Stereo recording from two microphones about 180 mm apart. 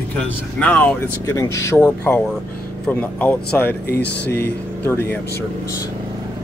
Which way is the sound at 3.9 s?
65° left (ahead or behind).